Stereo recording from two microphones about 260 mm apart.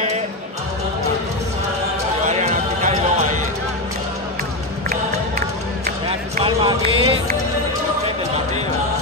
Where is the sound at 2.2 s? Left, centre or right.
Right.